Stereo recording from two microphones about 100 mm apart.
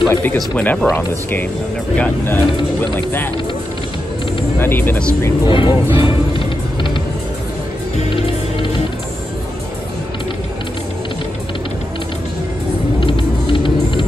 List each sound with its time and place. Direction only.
0.1 s speech: 20° left (ahead or behind)
2.0 s speech: 15° left (ahead or behind)
4.6 s speech: 20° left (ahead or behind)
5.5 s speech: 60° left (ahead or behind)
13.0 s music: 55° left (ahead or behind)